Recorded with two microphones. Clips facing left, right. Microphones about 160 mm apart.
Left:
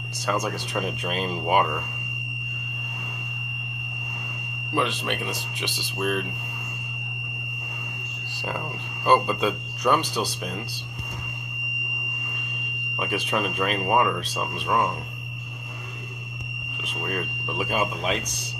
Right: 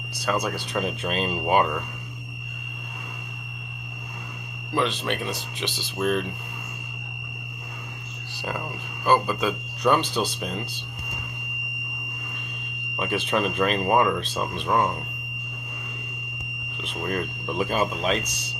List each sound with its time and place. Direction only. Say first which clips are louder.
0.3 s speech: right 1 dB; 10° left (ahead or behind)
4.7 s speech: right 1 dB; 15° left (ahead or behind)
9.0 s speech: left 1 dB; 25° left (ahead or behind)
13.0 s speech: right 2 dB; 10° left (ahead or behind)
17.1 s speech: right 3 dB; 5° left (ahead or behind)